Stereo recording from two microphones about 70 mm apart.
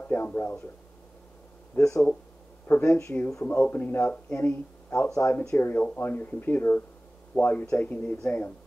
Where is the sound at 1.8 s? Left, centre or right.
Left.